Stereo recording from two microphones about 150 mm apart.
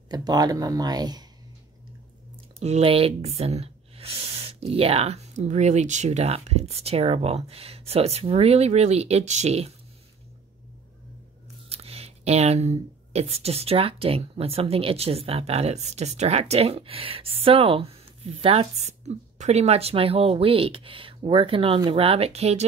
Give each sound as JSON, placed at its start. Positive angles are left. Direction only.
{"t": 0.1, "sound": "speech", "side_deg": -25}
{"t": 2.6, "sound": "speech", "side_deg": -40}
{"t": 11.7, "sound": "speech", "side_deg": -40}